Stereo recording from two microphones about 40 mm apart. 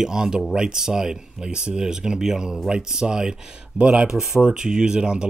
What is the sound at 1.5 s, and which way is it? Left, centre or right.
Speech, right.